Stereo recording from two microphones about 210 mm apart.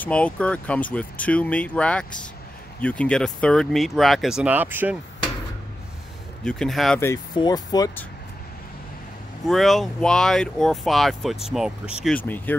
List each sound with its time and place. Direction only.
0.0 s speech: 5° left (ahead or behind)
6.4 s speech: 5° left (ahead or behind)
7.0 s speech: 15° left (ahead or behind)
9.5 s speech: centre (ahead or behind)